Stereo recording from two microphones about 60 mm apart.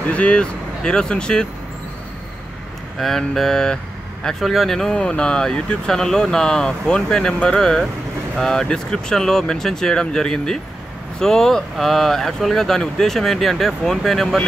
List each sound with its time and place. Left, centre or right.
0.1 s speech: centre
3.0 s speech: centre
4.9 s speech: centre